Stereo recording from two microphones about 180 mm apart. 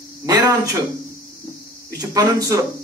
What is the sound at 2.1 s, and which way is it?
Speech, 20° right (ahead or behind).